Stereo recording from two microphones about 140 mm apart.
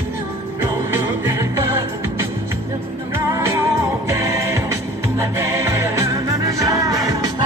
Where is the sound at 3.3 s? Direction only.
20° right (ahead or behind).